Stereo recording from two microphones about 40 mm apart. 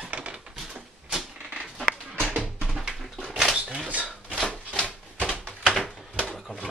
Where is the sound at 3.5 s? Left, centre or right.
Right.